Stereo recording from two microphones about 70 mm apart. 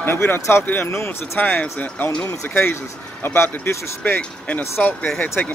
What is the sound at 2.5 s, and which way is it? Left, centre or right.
Speech, left.